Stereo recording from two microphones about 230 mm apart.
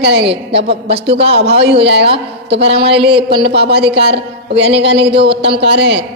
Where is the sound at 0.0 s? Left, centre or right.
Right.